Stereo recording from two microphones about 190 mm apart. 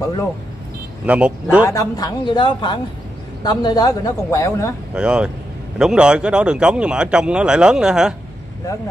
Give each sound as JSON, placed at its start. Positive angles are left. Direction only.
{"t": 1.0, "sound": "speech", "side_deg": -5}
{"t": 1.7, "sound": "a woman's voice", "side_deg": 20}
{"t": 4.9, "sound": "speech", "side_deg": -5}